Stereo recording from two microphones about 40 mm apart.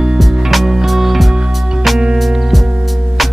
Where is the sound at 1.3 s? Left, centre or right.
Centre.